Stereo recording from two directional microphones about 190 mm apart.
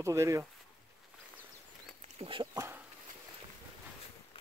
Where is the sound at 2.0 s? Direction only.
30° right (ahead or behind); by 2.9 s 15° right (ahead or behind).